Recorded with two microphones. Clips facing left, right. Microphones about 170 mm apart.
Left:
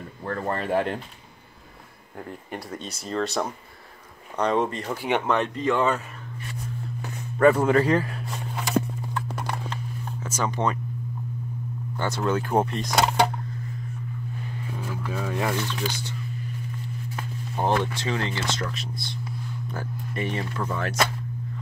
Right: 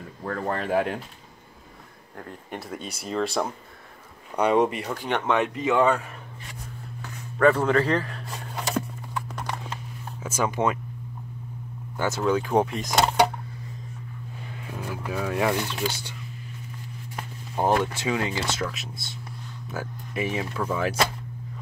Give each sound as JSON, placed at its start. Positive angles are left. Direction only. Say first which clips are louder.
{"t": 0.2, "sound": "speech", "louder": "even", "side_deg": 0}
{"t": 2.1, "sound": "speech", "louder": "left 1 dB", "side_deg": 5}
{"t": 4.4, "sound": "speech", "louder": "right 3 dB", "side_deg": -10}
{"t": 4.8, "sound": "speech", "louder": "left 1 dB", "side_deg": 10}
{"t": 7.0, "sound": "speech", "louder": "left 1 dB", "side_deg": 10}
{"t": 10.2, "sound": "speech", "louder": "right 2 dB", "side_deg": -10}
{"t": 12.0, "sound": "speech", "louder": "right 2 dB", "side_deg": 0}
{"t": 14.7, "sound": "speech", "louder": "right 1 dB", "side_deg": -10}
{"t": 17.1, "sound": "a sound", "louder": "right 1 dB", "side_deg": -10}
{"t": 17.9, "sound": "speech", "louder": "right 1 dB", "side_deg": -10}